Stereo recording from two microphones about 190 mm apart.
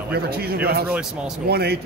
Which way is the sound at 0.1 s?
55° right (ahead or behind).